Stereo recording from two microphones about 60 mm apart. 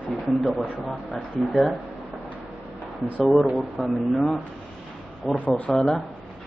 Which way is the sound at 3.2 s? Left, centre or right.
Centre.